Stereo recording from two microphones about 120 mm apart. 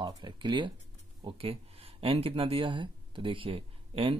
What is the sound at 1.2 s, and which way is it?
Speech, 50° right (ahead or behind).